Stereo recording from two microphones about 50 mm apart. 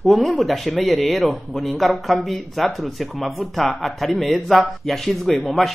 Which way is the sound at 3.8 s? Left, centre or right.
Centre.